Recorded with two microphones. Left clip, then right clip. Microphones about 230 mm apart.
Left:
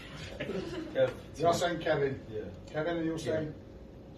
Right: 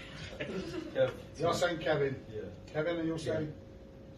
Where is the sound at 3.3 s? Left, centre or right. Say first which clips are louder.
Left 3 dB; centre.